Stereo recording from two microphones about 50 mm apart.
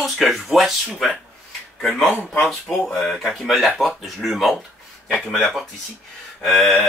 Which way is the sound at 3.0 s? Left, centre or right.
Centre.